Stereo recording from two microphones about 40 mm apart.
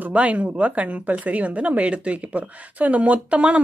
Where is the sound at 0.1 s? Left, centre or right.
Right.